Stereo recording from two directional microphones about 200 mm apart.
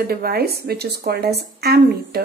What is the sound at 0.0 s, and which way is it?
Speech, 50° right (ahead or behind).